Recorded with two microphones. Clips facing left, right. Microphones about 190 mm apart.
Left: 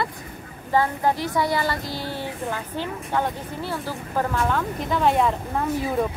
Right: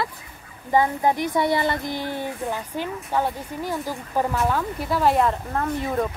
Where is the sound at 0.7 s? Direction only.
15° right (ahead or behind).